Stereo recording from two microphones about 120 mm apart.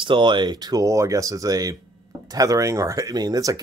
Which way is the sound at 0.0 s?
45° right (ahead or behind).